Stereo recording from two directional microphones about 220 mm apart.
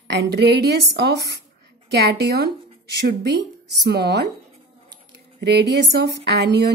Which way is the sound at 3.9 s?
50° right (ahead or behind).